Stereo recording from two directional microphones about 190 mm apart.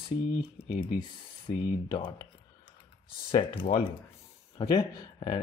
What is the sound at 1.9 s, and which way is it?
Speech, 25° left (ahead or behind).